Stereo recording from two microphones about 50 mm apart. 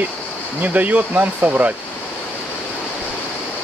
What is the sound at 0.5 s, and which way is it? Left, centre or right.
Speech, right.